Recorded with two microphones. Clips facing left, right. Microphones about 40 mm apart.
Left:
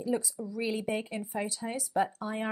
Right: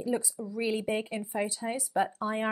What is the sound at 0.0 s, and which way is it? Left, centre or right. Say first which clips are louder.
Speech: even; centre.